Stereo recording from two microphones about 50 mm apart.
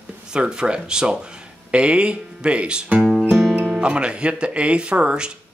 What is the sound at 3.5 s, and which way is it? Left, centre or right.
Speech, centre.